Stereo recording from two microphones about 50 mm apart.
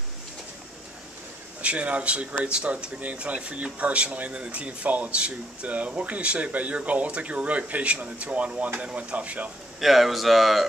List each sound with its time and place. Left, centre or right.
1.6 s speech: right
9.8 s speech: centre